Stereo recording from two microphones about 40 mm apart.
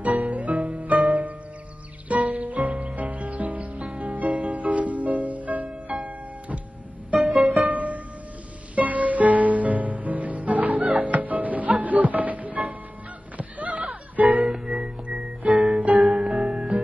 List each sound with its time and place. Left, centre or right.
0.0 s music: right